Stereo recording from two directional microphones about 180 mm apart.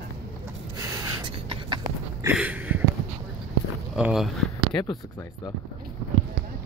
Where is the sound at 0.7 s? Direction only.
20° right (ahead or behind).